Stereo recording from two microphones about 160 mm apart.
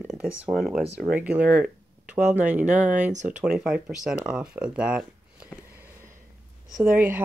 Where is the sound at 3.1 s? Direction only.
50° right (ahead or behind).